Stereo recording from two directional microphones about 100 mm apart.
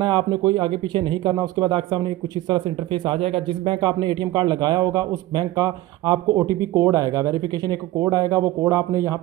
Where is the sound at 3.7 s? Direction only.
50° right (ahead or behind).